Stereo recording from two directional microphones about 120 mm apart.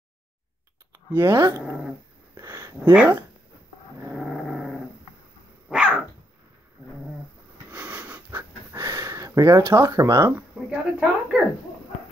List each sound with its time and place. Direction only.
1.1 s speech: 20° right (ahead or behind)
2.3 s a sound: 20° right (ahead or behind)
4.2 s dog: 5° right (ahead or behind)
7.7 s wheeze: 15° right (ahead or behind)
8.8 s speech: 25° right (ahead or behind)
10.3 s a sound: 10° right (ahead or behind)